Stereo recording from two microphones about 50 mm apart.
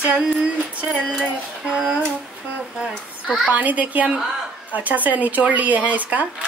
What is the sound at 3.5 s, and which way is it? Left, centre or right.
Speech, right.